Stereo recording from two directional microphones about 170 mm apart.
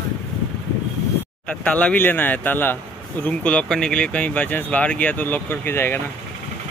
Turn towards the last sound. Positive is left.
turn(degrees=15)  # may be behind; listen again after turning